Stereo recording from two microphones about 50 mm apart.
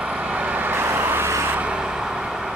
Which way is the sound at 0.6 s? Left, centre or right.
Right.